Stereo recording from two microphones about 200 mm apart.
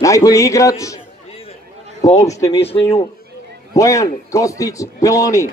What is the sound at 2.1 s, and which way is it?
Speech, 15° left (ahead or behind).